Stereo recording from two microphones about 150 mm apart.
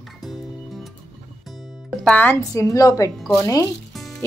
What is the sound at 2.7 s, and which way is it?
Speech, 25° left (ahead or behind).